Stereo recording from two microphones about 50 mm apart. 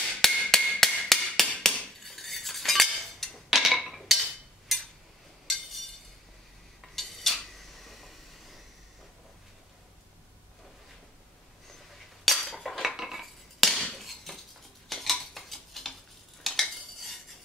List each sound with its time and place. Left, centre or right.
0.0 s hammer: centre
1.6 s cutlery: centre
3.4 s a sound: centre
3.8 s wood block: centre
4.7 s a sound: centre
6.8 s dishes: centre
12.4 s cutlery: centre
13.9 s a sound: centre
14.9 s cutlery: centre